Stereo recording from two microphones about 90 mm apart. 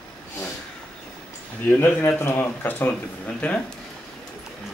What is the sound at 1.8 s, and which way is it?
Speech, 25° left (ahead or behind).